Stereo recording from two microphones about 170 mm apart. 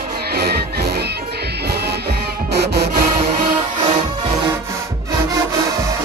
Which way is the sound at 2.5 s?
70° right (ahead or behind).